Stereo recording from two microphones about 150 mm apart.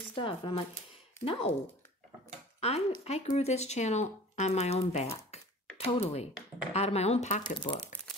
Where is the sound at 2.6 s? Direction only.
45° left (ahead or behind).